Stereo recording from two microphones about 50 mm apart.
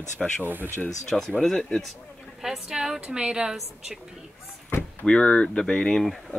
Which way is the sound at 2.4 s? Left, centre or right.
Centre.